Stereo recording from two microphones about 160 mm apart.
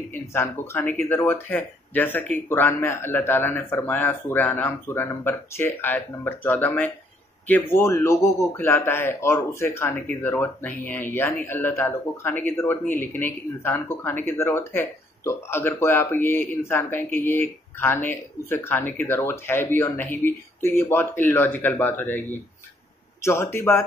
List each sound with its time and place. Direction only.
0.1 s speech: 15° left (ahead or behind)